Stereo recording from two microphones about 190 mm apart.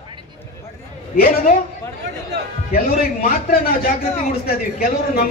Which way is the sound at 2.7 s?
50° left (ahead or behind).